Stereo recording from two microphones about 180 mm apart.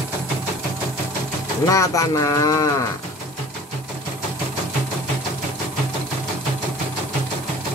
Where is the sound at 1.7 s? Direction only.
15° left (ahead or behind).